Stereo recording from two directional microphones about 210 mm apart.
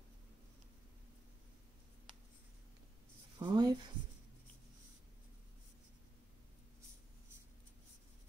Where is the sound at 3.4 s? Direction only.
20° right (ahead or behind).